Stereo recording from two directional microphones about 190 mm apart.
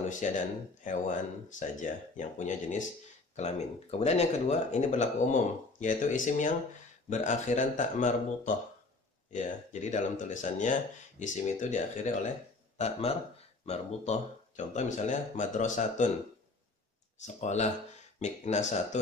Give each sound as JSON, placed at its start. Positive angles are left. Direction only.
{"t": 0.0, "sound": "speech", "side_deg": 40}
{"t": 17.4, "sound": "speech", "side_deg": 35}